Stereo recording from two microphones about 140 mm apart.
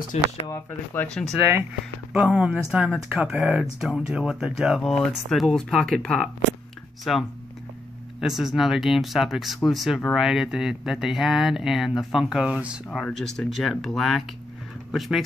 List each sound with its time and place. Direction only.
0.1 s speech: 50° left (ahead or behind)
0.7 s speech: 10° left (ahead or behind)
2.1 s speech: 5° right (ahead or behind)
13.0 s speech: 5° left (ahead or behind)